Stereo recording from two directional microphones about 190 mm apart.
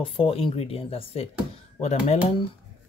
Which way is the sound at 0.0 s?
30° left (ahead or behind).